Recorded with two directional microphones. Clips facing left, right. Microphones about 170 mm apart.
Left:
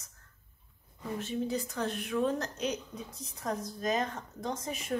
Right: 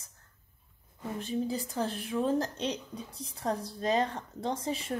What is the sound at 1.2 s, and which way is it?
A woman's voice, 35° right (ahead or behind).